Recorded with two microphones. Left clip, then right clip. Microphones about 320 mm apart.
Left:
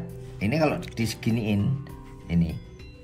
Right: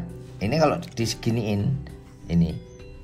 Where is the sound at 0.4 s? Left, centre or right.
Right.